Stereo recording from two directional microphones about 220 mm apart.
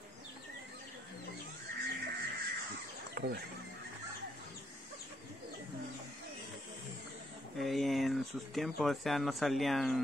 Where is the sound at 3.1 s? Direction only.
45° right (ahead or behind).